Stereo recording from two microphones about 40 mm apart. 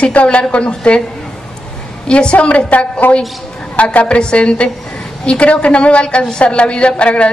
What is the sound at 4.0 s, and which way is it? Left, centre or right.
A woman's voice, left.